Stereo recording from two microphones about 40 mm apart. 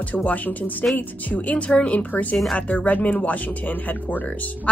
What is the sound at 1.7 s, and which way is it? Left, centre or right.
Speech, left.